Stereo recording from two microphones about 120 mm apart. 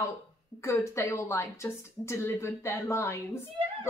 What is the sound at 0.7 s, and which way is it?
A woman's voice, 25° left (ahead or behind).